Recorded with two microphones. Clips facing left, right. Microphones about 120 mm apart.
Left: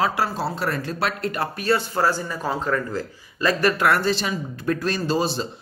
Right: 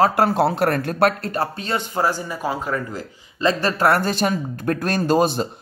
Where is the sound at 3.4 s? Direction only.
25° right (ahead or behind).